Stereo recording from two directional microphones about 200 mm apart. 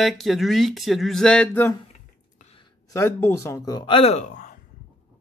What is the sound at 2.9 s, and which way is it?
Speech, 15° left (ahead or behind).